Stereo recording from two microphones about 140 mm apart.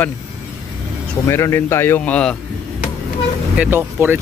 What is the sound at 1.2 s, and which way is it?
A man's voice, 20° left (ahead or behind).